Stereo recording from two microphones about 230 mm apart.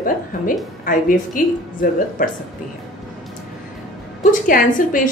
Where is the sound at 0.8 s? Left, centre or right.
Left.